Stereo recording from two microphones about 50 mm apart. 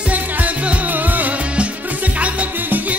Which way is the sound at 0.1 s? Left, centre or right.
Right.